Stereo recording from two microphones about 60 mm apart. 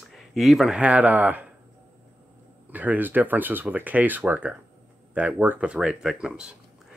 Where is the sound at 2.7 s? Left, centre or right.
Right.